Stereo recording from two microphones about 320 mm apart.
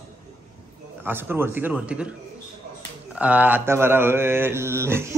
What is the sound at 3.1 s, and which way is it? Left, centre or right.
Mantra, centre.